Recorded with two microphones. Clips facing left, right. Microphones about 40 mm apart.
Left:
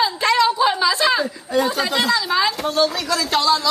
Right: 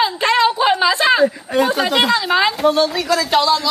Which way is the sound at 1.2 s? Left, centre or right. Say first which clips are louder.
Right 5 dB; right.